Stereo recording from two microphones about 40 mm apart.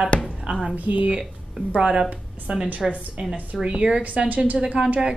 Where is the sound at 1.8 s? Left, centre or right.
Right.